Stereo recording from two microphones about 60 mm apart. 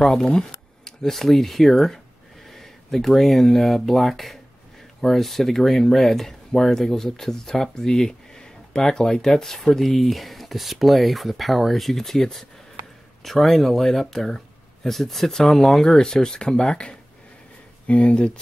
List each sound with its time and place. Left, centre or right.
0.0 s speech: centre